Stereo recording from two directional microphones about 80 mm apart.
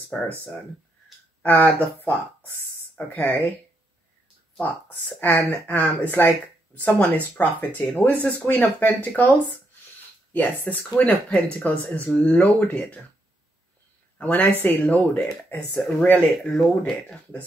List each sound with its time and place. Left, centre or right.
0.1 s speech: centre
1.4 s speech: left
3.1 s speech: left
5.2 s speech: left
14.1 s speech: left
15.1 s speech: centre
16.0 s speech: centre